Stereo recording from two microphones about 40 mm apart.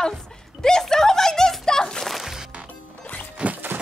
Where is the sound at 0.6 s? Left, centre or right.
Centre.